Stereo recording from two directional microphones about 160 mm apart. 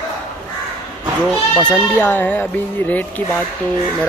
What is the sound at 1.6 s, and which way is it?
Speech, 10° left (ahead or behind).